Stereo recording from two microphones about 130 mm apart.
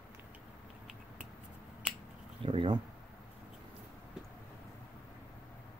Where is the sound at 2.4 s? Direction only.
45° right (ahead or behind).